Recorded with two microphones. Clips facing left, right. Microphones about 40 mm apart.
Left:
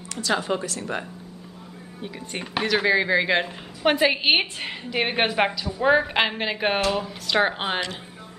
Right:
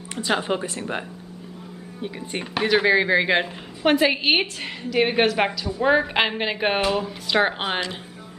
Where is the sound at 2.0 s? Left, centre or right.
Centre.